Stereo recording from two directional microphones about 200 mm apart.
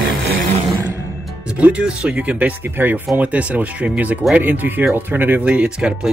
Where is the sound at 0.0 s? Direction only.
55° right (ahead or behind).